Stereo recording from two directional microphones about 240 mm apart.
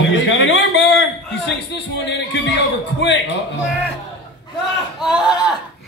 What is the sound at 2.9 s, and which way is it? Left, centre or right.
Speech, left.